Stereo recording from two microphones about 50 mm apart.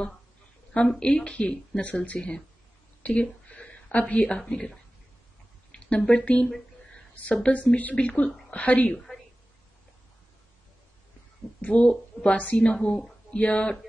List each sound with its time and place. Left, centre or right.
0.7 s speech: centre
3.0 s a sound: left
4.5 s a woman's voice: centre; by 9.0 s left
11.6 s speech: left